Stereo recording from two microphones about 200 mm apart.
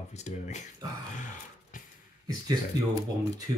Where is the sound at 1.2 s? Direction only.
40° left (ahead or behind).